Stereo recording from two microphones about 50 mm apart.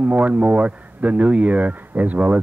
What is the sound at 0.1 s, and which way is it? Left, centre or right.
Speech, right.